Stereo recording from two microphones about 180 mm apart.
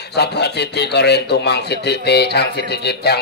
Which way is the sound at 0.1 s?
65° left (ahead or behind).